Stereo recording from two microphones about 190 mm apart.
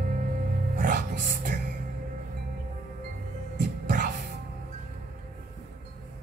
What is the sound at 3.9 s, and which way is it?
Music, 45° right (ahead or behind).